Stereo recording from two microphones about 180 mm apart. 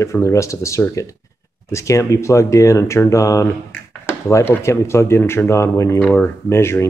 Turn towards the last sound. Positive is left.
turn(degrees=15)  # may be behind; listen again after turning